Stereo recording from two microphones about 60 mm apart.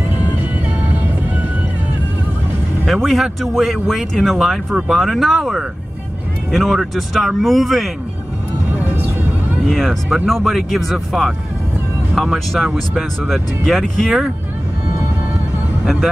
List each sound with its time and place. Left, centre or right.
0.1 s music: right
2.9 s speech: centre
8.6 s music: right
9.7 s speech: centre